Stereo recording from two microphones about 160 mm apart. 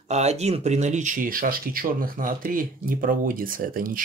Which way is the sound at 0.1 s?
45° right (ahead or behind).